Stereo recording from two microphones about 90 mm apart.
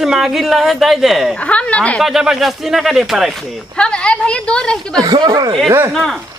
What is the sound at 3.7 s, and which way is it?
A woman's voice, 10° left (ahead or behind).